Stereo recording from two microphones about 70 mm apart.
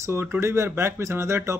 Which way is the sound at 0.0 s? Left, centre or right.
Right.